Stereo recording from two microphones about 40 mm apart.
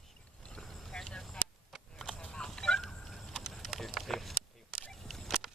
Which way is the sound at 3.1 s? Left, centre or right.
Centre.